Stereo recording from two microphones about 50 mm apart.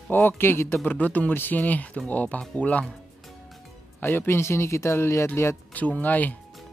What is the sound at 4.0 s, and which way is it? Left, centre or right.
Speech, left.